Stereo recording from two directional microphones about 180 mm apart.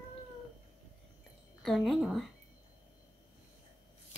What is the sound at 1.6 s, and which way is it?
Speech, centre (ahead or behind).